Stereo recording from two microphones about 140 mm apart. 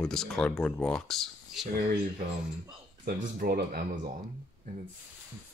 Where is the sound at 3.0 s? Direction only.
90° right.